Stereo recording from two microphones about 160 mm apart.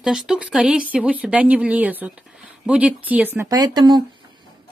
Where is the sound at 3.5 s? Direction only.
25° right (ahead or behind).